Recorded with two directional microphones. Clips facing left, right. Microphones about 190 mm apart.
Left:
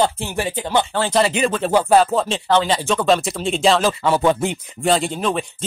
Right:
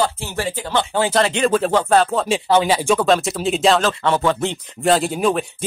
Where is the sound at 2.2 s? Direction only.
10° right (ahead or behind); by 4.5 s 15° left (ahead or behind).